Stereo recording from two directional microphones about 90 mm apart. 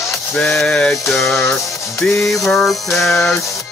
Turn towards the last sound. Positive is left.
turn(degrees=0)  # may be behind; listen again after turning